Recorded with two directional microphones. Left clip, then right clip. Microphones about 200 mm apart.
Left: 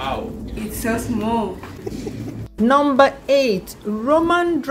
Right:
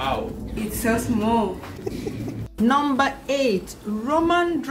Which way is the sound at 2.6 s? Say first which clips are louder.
Left 6 dB; 35° left (ahead or behind).